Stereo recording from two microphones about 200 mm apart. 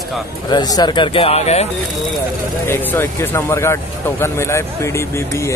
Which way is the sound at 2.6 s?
10° left (ahead or behind).